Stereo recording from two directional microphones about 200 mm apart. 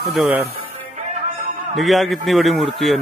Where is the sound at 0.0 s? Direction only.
Centre (ahead or behind).